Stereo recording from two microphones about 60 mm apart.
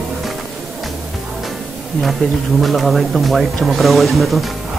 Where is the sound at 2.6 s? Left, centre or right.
Centre.